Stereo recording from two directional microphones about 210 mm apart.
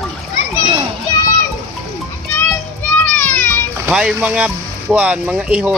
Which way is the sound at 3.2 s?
10° left (ahead or behind).